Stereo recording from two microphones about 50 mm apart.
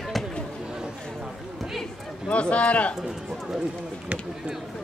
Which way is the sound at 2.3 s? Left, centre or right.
Left.